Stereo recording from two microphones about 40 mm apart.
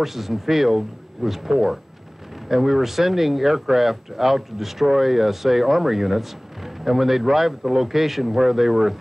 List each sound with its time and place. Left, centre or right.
0.0 s speech: centre